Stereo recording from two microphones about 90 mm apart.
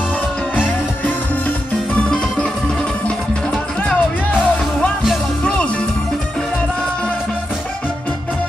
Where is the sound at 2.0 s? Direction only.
10° left (ahead or behind).